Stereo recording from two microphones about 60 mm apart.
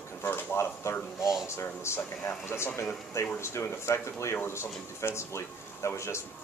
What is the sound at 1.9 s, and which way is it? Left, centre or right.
Speech, left.